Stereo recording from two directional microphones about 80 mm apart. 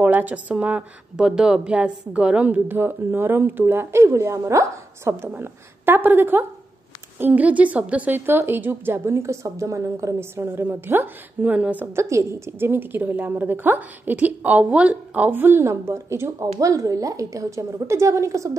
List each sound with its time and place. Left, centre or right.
0.0 s a woman's voice: centre
11.9 s a woman's voice: right